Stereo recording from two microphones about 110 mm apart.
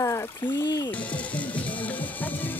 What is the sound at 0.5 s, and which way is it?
Music, 40° left (ahead or behind).